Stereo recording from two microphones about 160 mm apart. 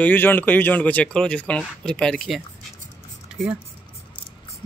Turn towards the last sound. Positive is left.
turn(degrees=-5)  # may be behind; listen again after turning